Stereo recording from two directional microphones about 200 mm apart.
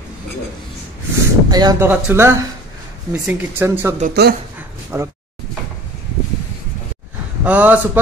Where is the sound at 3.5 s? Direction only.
10° right (ahead or behind).